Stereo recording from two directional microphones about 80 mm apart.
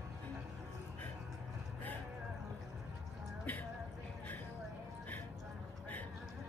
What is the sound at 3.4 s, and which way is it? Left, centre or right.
Music, left.